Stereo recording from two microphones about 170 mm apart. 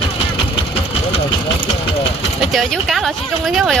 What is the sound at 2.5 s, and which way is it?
Speech, centre (ahead or behind).